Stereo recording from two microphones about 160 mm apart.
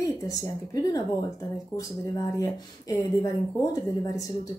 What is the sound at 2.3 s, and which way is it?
Speech, 20° left (ahead or behind).